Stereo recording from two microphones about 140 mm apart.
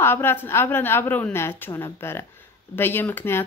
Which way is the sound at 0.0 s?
15° left (ahead or behind).